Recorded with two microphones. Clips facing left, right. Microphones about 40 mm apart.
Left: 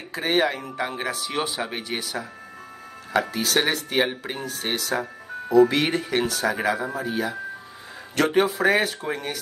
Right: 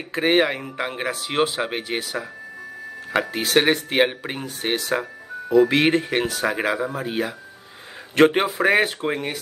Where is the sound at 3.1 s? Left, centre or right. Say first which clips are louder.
Right 1 dB; right.